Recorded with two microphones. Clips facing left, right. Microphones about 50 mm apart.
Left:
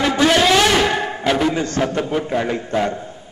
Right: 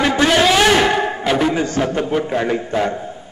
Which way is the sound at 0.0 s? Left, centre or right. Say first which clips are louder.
Right 1 dB; right.